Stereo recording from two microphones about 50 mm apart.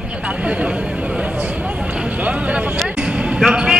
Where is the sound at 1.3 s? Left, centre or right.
Right.